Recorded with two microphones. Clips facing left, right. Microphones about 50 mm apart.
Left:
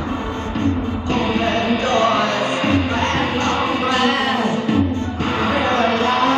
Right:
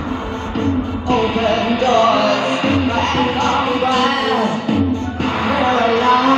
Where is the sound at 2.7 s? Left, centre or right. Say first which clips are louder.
Right 2 dB; right.